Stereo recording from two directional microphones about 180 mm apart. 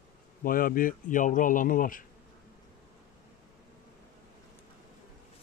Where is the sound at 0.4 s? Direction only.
50° left (ahead or behind).